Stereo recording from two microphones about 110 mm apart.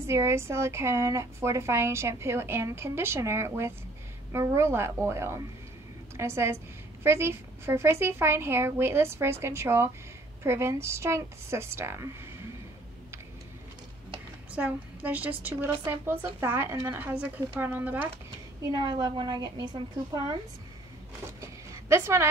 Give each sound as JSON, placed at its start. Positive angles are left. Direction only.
{"t": 0.0, "sound": "a woman's voice", "side_deg": -25}
{"t": 14.5, "sound": "a woman's voice", "side_deg": -15}
{"t": 18.6, "sound": "a woman's voice", "side_deg": -35}
{"t": 21.4, "sound": "a sound", "side_deg": -25}